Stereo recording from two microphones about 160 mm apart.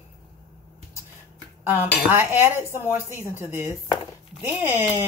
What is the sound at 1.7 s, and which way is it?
Speech, 15° right (ahead or behind).